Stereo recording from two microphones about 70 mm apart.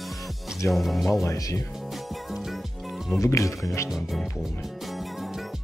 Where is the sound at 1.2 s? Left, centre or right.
Left.